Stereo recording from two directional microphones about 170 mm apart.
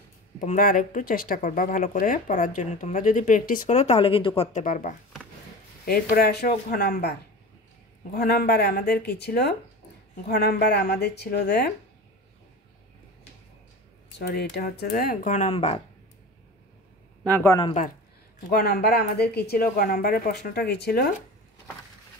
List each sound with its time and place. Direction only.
0.4 s speech: 55° left (ahead or behind); by 4.5 s 30° left (ahead or behind)
4.5 s speech: 45° left (ahead or behind)
5.9 s speech: 65° left (ahead or behind)
14.1 s speech: 70° left (ahead or behind); by 15.8 s 35° left (ahead or behind)
17.3 s speech: 15° left (ahead or behind)
18.5 s speech: 65° left (ahead or behind)